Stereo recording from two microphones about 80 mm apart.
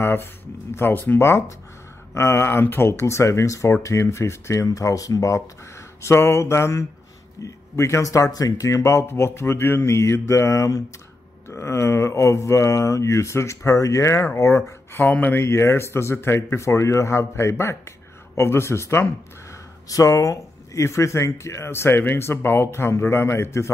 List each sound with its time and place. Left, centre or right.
0.0 s a sound: left
0.7 s speech: left
6.0 s speech: left
9.0 s speech: left
15.0 s speech: left
15.4 s speech: left
19.9 s speech: left